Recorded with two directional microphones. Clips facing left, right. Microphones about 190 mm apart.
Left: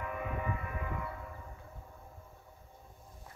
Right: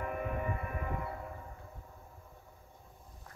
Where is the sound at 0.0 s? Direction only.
50° right (ahead or behind).